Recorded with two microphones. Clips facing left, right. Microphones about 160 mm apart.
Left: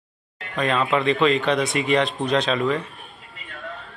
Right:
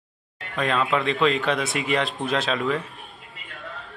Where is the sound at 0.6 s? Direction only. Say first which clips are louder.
Left 2 dB; centre (ahead or behind).